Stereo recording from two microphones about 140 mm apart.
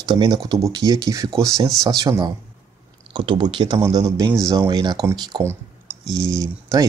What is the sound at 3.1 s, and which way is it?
Speech, 40° right (ahead or behind).